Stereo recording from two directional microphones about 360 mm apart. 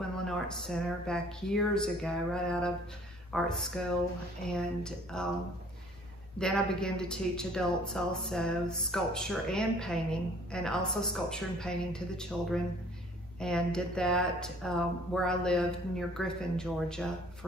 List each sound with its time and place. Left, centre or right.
0.2 s speech: centre
6.3 s speech: centre